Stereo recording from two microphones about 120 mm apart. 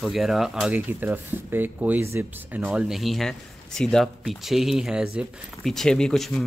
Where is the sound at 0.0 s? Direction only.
Centre (ahead or behind).